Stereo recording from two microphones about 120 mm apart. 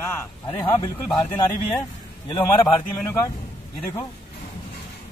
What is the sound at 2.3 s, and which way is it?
Speech, 30° left (ahead or behind).